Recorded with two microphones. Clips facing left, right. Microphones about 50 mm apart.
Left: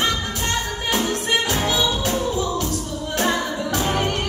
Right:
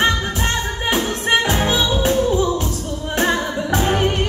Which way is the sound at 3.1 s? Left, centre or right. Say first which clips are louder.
Right 3 dB; right.